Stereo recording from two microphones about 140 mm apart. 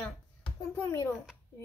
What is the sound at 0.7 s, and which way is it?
Speech, 20° left (ahead or behind).